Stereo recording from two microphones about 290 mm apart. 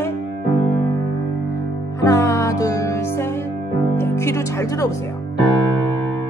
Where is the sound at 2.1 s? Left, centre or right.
Centre.